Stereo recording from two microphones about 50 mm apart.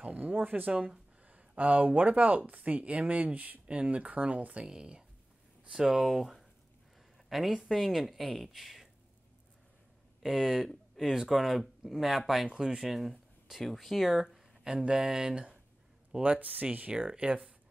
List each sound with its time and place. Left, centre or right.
0.0 s speech: right
4.6 s speech: centre
10.2 s speech: centre
12.4 s speech: centre
14.2 s a sound: centre
15.0 s speech: centre
16.2 s speech: right
16.9 s speech: centre